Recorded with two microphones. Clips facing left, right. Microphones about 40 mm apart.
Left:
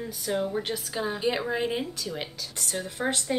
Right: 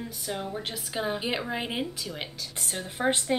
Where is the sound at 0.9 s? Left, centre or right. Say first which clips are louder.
Even; centre.